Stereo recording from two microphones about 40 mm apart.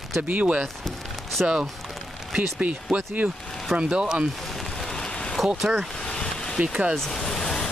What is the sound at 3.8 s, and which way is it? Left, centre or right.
Speech, right.